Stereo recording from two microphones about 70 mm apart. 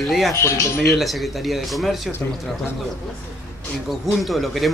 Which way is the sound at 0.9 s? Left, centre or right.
Centre.